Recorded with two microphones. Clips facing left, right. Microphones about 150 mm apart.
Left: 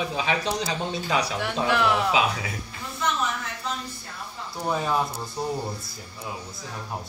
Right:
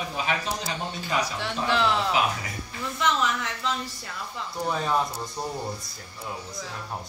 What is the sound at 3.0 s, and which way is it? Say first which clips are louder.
Speech: right 2 dB; 90° right.